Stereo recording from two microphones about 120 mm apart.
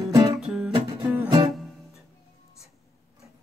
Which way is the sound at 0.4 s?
5° right (ahead or behind).